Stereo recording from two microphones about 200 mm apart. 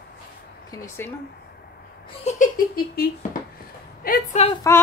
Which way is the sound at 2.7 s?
50° left (ahead or behind).